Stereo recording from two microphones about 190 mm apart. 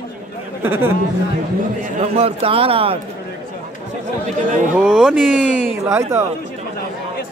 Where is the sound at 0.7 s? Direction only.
10° right (ahead or behind).